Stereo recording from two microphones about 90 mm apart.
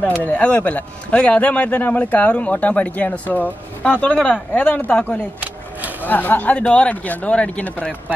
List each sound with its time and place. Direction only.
0.0 s speech: 15° left (ahead or behind)
5.4 s vehicle: 20° right (ahead or behind)
6.0 s speech: 20° left (ahead or behind)